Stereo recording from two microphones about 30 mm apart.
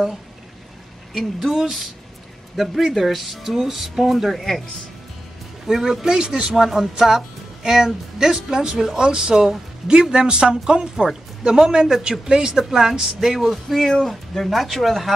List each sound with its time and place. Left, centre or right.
1.1 s speech: centre
4.4 s speech: centre
5.7 s speech: centre
6.0 s speech: right
6.5 s a woman's voice: centre; by 12.6 s right
12.6 s speech: centre